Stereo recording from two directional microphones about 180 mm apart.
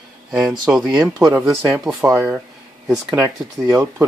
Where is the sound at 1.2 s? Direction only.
15° right (ahead or behind).